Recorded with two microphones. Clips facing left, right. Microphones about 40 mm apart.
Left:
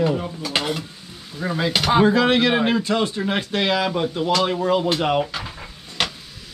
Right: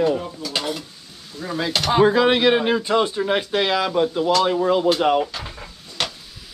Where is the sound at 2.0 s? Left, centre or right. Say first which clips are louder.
Right 3 dB; centre.